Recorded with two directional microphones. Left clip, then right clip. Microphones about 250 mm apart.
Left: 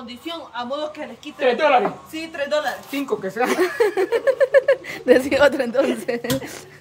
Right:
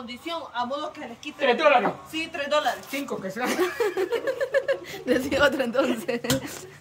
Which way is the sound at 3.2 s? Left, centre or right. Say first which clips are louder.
Left 5 dB; centre.